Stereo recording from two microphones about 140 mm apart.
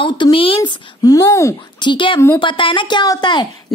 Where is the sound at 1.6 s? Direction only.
35° left (ahead or behind).